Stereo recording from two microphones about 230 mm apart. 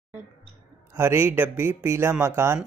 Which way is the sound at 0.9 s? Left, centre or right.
Centre.